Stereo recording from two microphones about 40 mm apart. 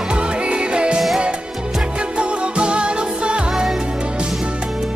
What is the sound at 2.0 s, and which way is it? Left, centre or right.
Music, right.